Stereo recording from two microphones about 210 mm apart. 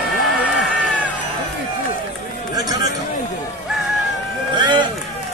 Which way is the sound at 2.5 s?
15° right (ahead or behind).